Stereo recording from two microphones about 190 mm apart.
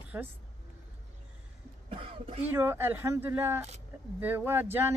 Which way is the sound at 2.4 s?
10° right (ahead or behind).